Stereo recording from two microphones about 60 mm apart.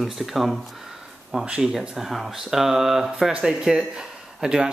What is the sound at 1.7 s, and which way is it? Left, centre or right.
Speech, centre.